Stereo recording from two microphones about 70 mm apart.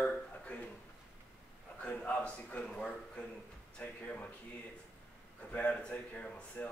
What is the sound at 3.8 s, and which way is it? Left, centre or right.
Music, left.